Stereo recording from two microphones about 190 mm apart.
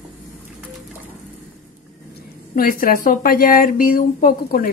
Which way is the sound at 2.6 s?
50° left (ahead or behind).